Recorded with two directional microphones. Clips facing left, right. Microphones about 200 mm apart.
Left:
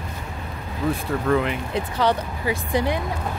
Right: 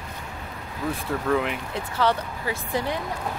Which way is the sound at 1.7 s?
15° left (ahead or behind).